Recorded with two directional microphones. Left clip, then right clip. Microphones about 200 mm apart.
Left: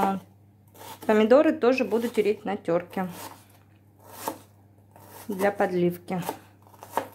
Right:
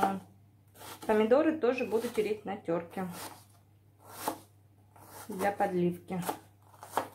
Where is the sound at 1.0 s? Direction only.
50° left (ahead or behind).